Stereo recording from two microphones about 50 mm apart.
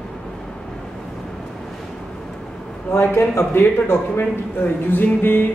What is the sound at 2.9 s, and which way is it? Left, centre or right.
A man's voice, left.